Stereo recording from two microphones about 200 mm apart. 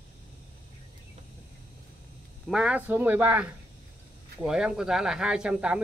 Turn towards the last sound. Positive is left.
turn(degrees=-5)  # may be behind; listen again after turning